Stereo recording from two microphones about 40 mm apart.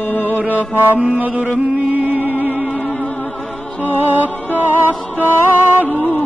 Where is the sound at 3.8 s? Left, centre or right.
Right.